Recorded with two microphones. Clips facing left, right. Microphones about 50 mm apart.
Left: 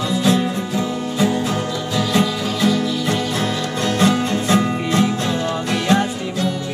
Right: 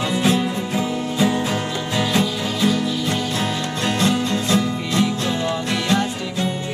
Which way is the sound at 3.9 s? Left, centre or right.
Left.